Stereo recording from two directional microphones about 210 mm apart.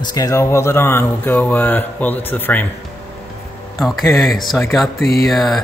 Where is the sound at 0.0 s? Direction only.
20° left (ahead or behind).